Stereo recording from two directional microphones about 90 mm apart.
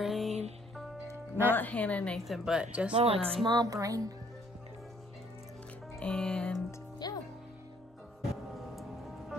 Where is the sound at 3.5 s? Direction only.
45° right (ahead or behind).